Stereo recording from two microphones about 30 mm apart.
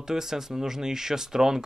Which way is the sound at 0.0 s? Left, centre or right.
Centre.